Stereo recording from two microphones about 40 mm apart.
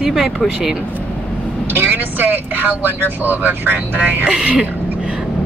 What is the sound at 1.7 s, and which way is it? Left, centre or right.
Speech, right.